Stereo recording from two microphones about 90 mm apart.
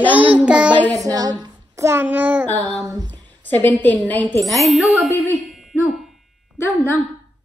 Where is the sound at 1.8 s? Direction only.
25° right (ahead or behind).